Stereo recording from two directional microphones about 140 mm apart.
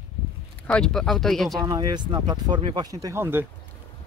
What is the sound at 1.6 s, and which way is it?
Speech, 30° right (ahead or behind).